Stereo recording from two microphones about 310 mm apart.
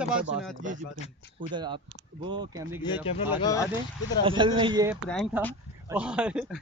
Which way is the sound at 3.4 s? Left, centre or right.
Centre.